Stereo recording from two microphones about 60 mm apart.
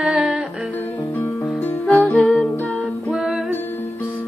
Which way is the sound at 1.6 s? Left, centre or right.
Left.